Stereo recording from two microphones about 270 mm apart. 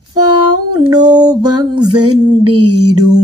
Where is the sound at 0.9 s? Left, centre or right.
Centre.